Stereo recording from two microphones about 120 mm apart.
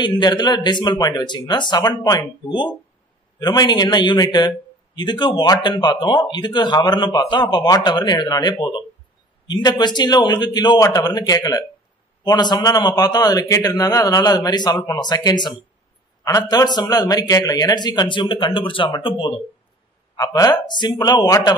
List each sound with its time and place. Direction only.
0.0 s speech: 40° left (ahead or behind)
20.2 s speech: 30° left (ahead or behind)